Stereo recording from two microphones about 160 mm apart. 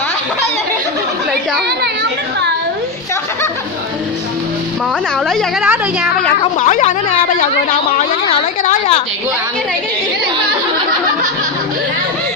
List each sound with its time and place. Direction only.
5.3 s a woman's voice: 5° right (ahead or behind)
6.6 s a woman's voice: 50° left (ahead or behind)
8.6 s a woman's voice: 40° left (ahead or behind)